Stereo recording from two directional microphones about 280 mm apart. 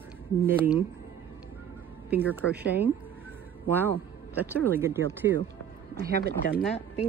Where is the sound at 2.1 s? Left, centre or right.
Centre.